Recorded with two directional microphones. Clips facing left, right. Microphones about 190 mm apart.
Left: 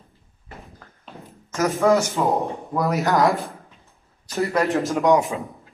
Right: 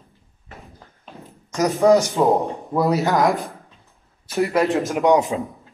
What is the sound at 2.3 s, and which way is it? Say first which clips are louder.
Speech: right 2 dB; centre (ahead or behind).